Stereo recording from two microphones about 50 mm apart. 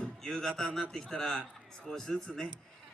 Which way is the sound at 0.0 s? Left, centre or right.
Centre.